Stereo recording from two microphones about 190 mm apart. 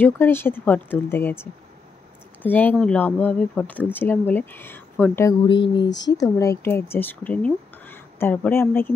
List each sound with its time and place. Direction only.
0.0 s speech: 10° left (ahead or behind)
5.5 s speech: 25° left (ahead or behind)
5.9 s speech: 70° left (ahead or behind)
6.1 s speech: 15° left (ahead or behind)